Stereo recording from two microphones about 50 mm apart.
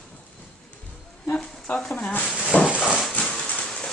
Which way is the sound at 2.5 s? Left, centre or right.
Left.